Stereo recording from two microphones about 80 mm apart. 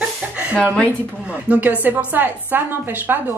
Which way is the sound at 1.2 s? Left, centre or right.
Centre.